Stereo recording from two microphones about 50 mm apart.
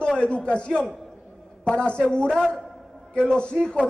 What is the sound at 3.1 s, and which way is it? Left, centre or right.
Speech, centre.